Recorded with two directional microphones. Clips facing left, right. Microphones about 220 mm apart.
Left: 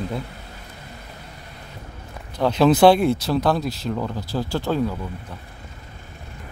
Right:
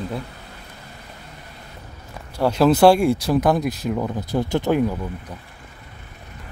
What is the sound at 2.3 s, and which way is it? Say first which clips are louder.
Speech: even; 10° right (ahead or behind).